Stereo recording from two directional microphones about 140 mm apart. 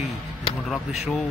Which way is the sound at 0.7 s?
Centre (ahead or behind).